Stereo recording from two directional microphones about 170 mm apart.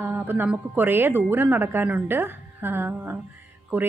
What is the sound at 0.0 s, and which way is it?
A woman's voice, 10° right (ahead or behind).